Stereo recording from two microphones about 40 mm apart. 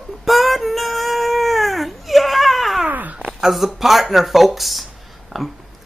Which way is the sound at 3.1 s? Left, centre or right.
Centre.